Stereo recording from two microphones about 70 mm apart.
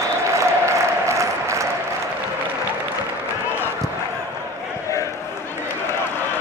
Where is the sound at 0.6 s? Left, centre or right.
Right.